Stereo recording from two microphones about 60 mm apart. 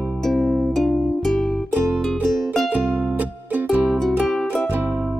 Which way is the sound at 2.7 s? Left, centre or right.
Right.